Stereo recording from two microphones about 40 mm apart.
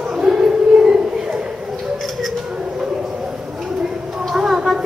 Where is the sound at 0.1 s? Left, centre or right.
Centre.